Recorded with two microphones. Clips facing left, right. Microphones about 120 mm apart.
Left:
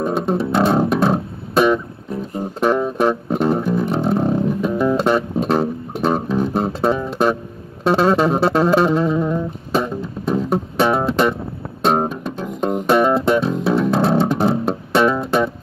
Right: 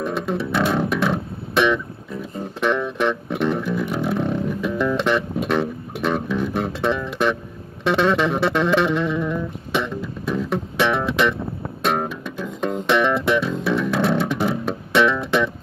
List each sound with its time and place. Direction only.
0.0 s music: 35° left (ahead or behind)
7.8 s a sound: 35° left (ahead or behind)
11.8 s music: 40° left (ahead or behind)
12.4 s music: 30° left (ahead or behind)
12.8 s music: 40° left (ahead or behind)